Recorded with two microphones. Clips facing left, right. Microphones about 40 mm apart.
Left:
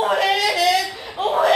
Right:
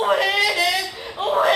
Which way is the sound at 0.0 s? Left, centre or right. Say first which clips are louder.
Even; centre.